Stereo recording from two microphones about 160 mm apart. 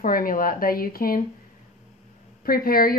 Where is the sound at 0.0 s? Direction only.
60° left (ahead or behind).